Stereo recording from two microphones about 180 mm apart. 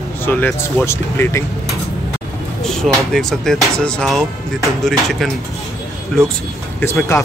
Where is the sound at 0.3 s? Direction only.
10° left (ahead or behind).